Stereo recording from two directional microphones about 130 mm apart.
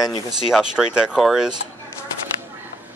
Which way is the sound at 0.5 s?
5° right (ahead or behind).